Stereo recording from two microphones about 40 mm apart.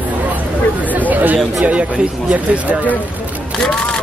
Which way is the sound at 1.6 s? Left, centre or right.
Right.